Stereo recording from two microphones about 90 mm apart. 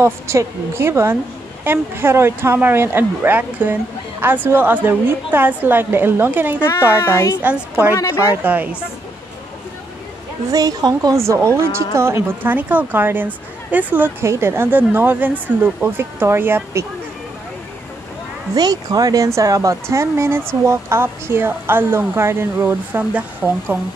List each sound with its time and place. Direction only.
0.0 s speech: 30° right (ahead or behind)
7.9 s speech: 35° left (ahead or behind)
8.2 s speech: 20° right (ahead or behind)
10.5 s a woman's voice: 45° right (ahead or behind)
11.1 s speech: 30° right (ahead or behind)
18.5 s speech: 45° right (ahead or behind); by 23.8 s 20° right (ahead or behind)